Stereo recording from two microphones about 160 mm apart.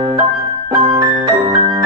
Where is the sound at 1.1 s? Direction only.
45° right (ahead or behind).